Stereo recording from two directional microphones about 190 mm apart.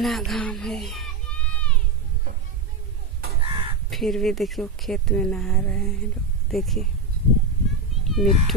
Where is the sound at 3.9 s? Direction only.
Centre (ahead or behind).